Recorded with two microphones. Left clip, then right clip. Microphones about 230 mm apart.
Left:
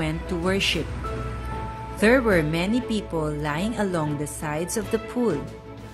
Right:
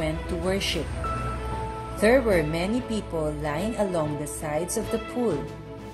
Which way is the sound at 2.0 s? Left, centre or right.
Left.